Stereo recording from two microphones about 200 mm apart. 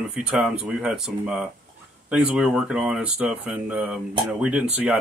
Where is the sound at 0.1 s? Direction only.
5° right (ahead or behind).